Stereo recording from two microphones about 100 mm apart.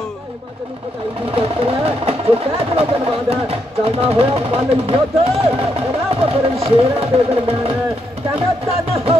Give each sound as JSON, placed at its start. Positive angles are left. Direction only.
{"t": 1.3, "sound": "speech", "side_deg": -75}